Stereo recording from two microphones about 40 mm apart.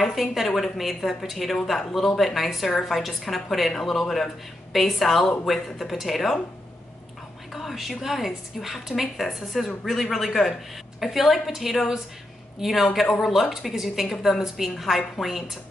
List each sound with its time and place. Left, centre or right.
0.0 s a woman's voice: centre
7.5 s a woman's voice: centre